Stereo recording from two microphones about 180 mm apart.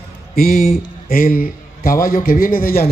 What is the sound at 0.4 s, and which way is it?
A man's voice, 50° left (ahead or behind).